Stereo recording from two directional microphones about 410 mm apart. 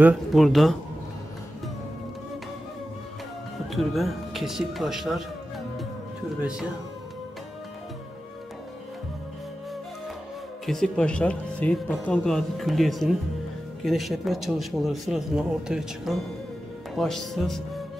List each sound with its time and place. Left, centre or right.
0.0 s speech: centre
3.7 s speech: centre
6.4 s speech: centre
10.6 s speech: centre